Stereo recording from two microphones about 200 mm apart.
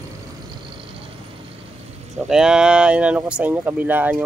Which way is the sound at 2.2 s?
5° right (ahead or behind).